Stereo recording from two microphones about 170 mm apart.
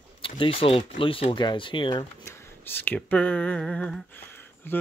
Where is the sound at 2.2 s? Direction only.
10° left (ahead or behind).